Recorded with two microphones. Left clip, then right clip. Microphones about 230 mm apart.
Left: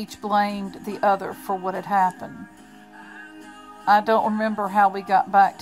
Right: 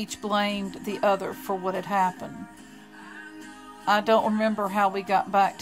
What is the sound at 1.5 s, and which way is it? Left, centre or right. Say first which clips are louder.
Speech: left 4 dB; centre.